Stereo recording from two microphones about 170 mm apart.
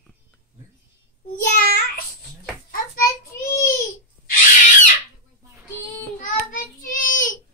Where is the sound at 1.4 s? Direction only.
55° left (ahead or behind).